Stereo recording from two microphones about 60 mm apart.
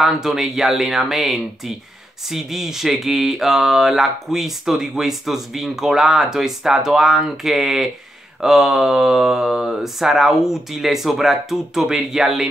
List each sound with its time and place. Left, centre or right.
0.0 s speech: centre